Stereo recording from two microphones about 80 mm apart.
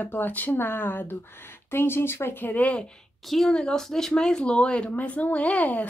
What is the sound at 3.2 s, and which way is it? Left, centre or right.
Speech, centre.